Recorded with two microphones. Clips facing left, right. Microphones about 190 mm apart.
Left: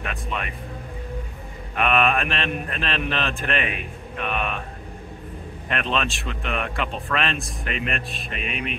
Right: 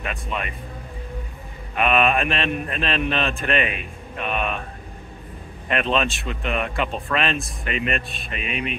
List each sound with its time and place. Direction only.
0.0 s speech: centre (ahead or behind)
1.8 s speech: centre (ahead or behind)
5.7 s speech: centre (ahead or behind)